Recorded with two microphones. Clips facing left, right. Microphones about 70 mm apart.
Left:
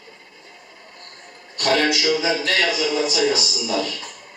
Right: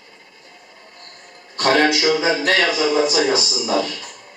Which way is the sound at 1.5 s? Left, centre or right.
Right.